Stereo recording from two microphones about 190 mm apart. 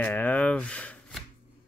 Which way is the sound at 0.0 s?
10° left (ahead or behind).